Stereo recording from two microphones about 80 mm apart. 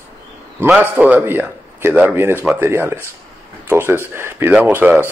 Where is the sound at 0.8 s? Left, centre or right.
Centre.